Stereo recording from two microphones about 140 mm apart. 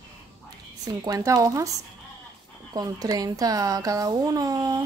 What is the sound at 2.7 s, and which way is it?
Speech, 25° right (ahead or behind).